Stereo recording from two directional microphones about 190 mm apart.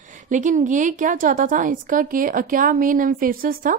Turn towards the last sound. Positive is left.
turn(degrees=-50)  # may be behind; listen again after turning